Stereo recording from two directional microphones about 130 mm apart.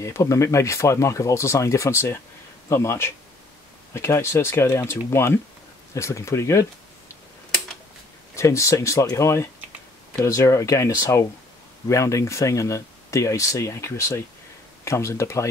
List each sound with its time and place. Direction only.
0.0 s speech: 20° left (ahead or behind)
8.4 s speech: 25° left (ahead or behind)